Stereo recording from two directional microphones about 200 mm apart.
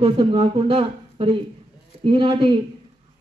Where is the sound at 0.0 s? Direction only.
30° right (ahead or behind).